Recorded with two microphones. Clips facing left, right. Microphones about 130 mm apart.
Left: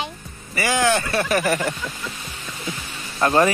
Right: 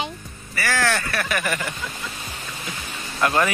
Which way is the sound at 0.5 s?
20° left (ahead or behind).